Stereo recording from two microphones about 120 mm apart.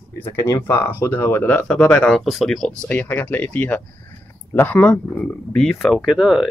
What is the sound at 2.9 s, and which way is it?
Speech, 15° left (ahead or behind).